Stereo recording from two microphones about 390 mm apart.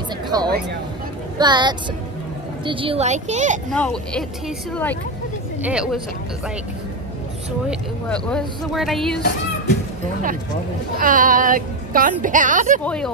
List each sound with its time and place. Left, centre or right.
0.3 s a woman's voice: centre
3.7 s speech: centre
5.6 s speech: centre
8.1 s speech: centre
11.0 s a woman's voice: right
12.8 s speech: centre